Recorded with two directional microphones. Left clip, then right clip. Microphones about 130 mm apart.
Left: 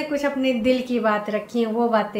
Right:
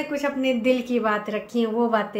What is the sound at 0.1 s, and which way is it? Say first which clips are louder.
A woman's voice: left 2 dB; 30° right (ahead or behind).